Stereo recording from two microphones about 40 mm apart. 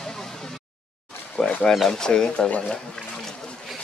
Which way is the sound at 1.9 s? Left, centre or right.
Centre.